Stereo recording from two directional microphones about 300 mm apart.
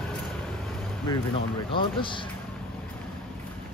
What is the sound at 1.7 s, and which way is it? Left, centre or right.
Speech, centre.